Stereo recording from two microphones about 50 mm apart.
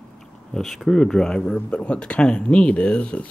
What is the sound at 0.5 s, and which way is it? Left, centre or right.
Speech, centre.